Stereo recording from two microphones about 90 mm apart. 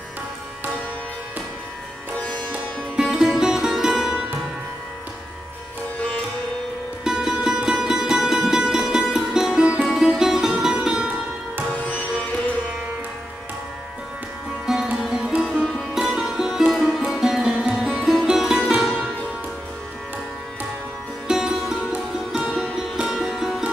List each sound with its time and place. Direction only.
2.1 s sitar: 10° left (ahead or behind)
2.5 s music: 5° right (ahead or behind)
7.1 s music: 5° right (ahead or behind)
11.7 s music: 15° left (ahead or behind)
14.7 s sitar: 5° right (ahead or behind)
15.4 s music: 10° left (ahead or behind)
15.9 s music: 5° right (ahead or behind)
17.7 s sitar: centre (ahead or behind)
21.3 s music: 5° right (ahead or behind)